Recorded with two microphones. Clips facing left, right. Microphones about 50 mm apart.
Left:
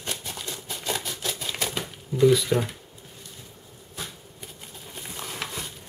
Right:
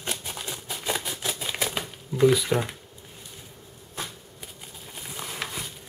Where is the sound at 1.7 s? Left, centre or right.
Right.